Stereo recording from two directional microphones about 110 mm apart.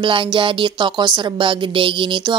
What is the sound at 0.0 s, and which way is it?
Speech, 50° right (ahead or behind).